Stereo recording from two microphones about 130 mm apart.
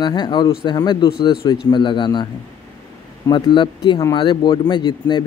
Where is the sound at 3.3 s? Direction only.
35° left (ahead or behind).